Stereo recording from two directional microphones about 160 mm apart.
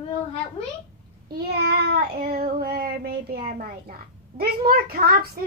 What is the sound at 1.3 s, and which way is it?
Child singing, 80° right.